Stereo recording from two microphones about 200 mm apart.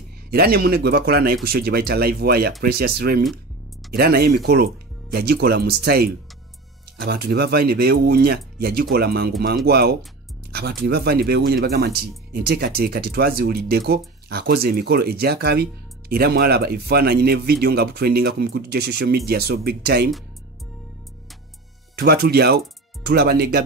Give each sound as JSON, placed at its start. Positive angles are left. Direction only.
{"t": 0.3, "sound": "speech", "side_deg": -50}
{"t": 7.1, "sound": "speech", "side_deg": -50}
{"t": 21.9, "sound": "speech", "side_deg": -55}